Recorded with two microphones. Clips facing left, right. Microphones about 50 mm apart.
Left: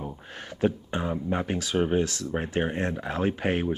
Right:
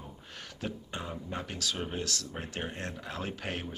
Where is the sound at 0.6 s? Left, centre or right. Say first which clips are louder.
Left 12 dB; left.